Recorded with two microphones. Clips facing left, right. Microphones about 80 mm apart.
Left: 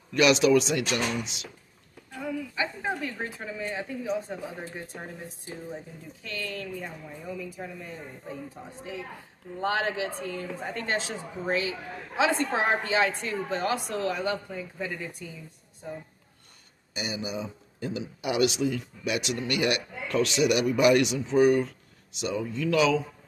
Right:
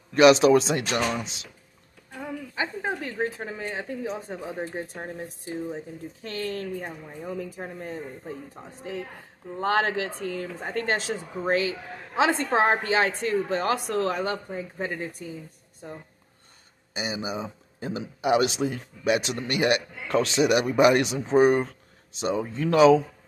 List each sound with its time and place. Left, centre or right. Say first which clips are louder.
0.1 s speech: right 4 dB; right
2.5 s speech: right 5 dB; right
6.2 s a woman's voice: right 4 dB; right
9.6 s a woman's voice: right 3 dB; right
16.9 s speech: right 2 dB; right